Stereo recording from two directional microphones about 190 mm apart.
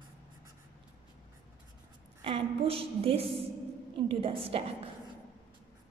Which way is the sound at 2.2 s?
25° right (ahead or behind).